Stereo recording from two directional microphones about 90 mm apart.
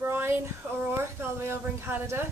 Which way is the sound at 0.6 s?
20° right (ahead or behind).